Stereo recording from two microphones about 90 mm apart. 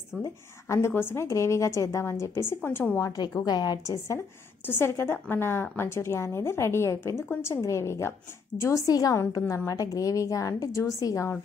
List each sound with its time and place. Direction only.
0.7 s a woman's voice: 25° left (ahead or behind)
3.0 s a woman's voice: 35° left (ahead or behind)
4.6 s a woman's voice: 25° left (ahead or behind)